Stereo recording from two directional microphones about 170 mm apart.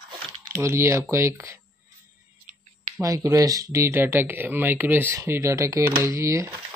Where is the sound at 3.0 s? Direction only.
20° right (ahead or behind).